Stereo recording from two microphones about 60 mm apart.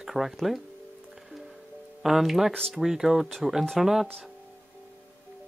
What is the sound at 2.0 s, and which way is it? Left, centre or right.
Speech, centre.